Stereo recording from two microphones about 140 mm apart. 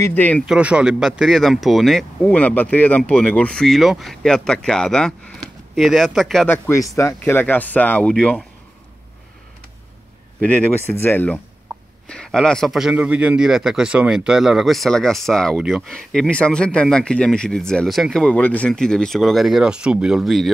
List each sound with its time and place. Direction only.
0.0 s speech: 10° left (ahead or behind)
0.5 s speech: 10° right (ahead or behind)
6.5 s speech: 20° left (ahead or behind)
11.0 s speech: 15° left (ahead or behind)